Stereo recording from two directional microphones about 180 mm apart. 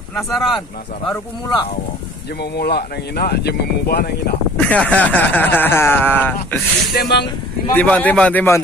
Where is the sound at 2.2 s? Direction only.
65° left (ahead or behind).